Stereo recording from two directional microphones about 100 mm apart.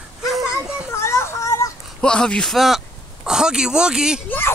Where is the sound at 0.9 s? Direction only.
25° left (ahead or behind).